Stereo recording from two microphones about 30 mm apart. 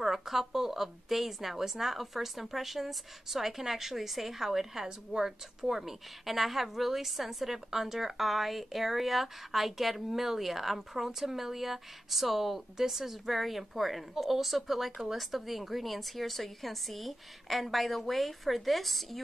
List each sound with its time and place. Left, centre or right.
0.0 s a woman's voice: centre
4.8 s a woman's voice: right
5.6 s a woman's voice: centre